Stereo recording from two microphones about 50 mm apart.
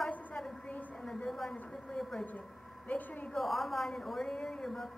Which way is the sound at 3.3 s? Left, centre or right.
Centre.